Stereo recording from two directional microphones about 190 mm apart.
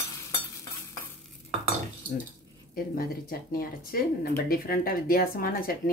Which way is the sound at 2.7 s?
50° left (ahead or behind).